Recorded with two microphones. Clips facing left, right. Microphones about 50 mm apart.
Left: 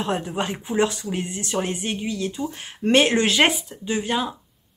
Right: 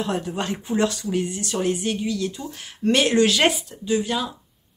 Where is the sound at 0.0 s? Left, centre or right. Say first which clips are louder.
Left 1 dB; left.